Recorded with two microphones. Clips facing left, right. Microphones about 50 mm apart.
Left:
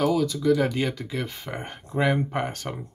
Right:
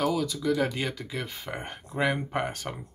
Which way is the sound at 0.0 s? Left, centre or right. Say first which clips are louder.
Left 4 dB; centre.